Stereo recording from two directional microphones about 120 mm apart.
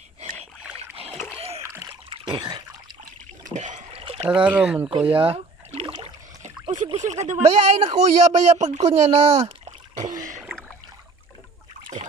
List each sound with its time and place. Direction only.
0.7 s rowboat: 55° right (ahead or behind)
1.6 s splash: 20° right (ahead or behind)
2.0 s trickle: 40° right (ahead or behind)
3.4 s a sound: 90° right
3.9 s a sound: 55° right (ahead or behind)
4.3 s speech: 10° right (ahead or behind)
5.0 s rowboat: 50° right (ahead or behind)
7.0 s speech: 80° right
7.4 s speech: 65° right (ahead or behind)
10.1 s throat clearing: 90° right